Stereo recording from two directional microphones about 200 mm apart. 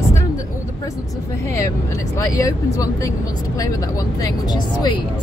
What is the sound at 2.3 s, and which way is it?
Speech, 15° left (ahead or behind).